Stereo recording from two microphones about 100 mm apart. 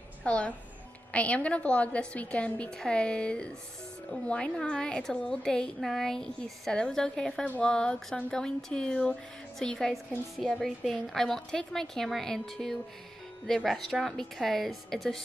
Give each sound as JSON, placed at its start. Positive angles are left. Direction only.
{"t": 0.2, "sound": "a woman's voice", "side_deg": 10}